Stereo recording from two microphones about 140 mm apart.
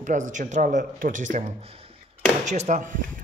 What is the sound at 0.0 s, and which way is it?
Speech, 65° right (ahead or behind).